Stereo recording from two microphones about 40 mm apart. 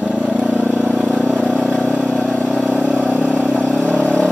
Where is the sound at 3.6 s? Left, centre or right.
Centre.